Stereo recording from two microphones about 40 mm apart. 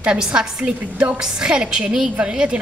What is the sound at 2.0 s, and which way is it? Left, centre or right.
Speech, right.